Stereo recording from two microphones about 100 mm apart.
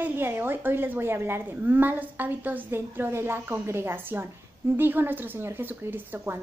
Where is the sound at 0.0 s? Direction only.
20° right (ahead or behind).